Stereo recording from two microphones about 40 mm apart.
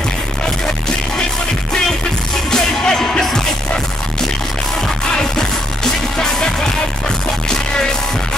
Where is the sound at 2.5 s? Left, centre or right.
Centre.